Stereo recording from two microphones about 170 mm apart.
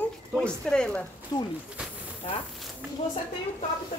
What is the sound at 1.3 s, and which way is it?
Speech, 25° left (ahead or behind).